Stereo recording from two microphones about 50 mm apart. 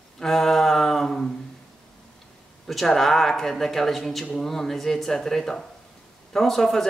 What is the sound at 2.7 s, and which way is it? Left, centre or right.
Speech, centre.